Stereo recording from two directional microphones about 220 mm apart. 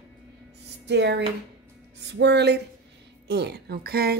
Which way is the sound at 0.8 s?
50° right (ahead or behind).